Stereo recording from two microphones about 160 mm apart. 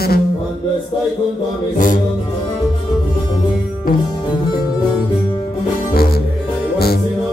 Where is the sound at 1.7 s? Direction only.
55° left (ahead or behind).